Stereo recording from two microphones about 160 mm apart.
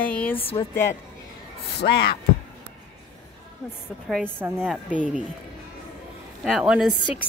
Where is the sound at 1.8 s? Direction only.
90° left.